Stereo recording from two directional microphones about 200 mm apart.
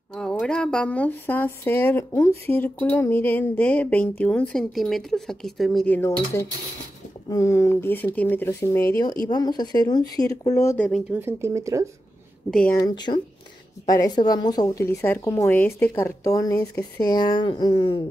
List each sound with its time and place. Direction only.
0.1 s a woman's voice: 5° left (ahead or behind)
10.9 s speech: 10° right (ahead or behind)
12.4 s speech: 5° left (ahead or behind)
12.7 s a woman's voice: 20° left (ahead or behind)